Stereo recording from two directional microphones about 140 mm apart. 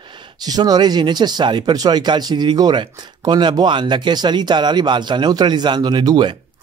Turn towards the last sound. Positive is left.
turn(degrees=-30)  # may be behind; listen again after turning